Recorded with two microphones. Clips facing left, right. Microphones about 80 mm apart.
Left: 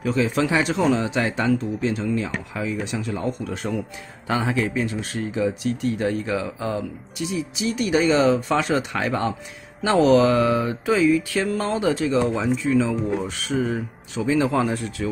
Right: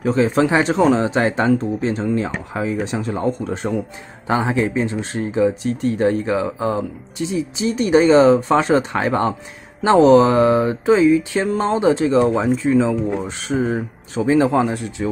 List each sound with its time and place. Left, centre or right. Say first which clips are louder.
0.0 s speech: right 5 dB; right
9.8 s mantra: right 5 dB; right
12.2 s speech: right 5 dB; right